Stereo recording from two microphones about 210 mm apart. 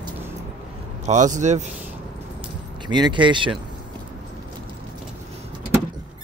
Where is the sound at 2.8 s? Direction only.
20° right (ahead or behind).